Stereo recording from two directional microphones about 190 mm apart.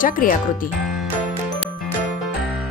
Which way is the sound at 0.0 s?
45° left (ahead or behind).